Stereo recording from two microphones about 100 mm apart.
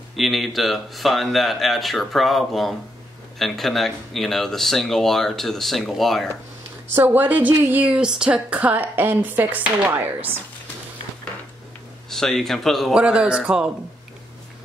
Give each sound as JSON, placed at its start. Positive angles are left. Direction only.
{"t": 0.1, "sound": "speech", "side_deg": 0}
{"t": 7.0, "sound": "speech", "side_deg": -15}
{"t": 12.1, "sound": "speech", "side_deg": 5}
{"t": 12.9, "sound": "speech", "side_deg": -10}